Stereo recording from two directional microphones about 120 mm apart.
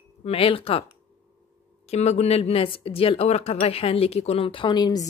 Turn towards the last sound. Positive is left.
turn(degrees=35)  # may be behind; listen again after turning